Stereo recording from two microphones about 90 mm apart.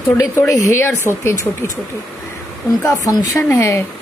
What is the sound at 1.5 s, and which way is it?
Speech, 15° left (ahead or behind).